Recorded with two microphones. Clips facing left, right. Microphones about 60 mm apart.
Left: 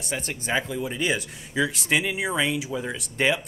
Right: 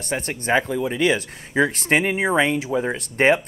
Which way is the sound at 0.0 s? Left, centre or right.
Right.